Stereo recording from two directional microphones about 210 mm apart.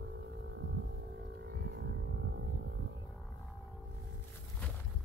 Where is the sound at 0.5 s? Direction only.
60° right (ahead or behind).